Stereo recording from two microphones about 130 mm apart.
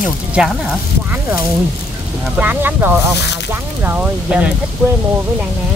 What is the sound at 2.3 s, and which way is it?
Speech, 15° right (ahead or behind).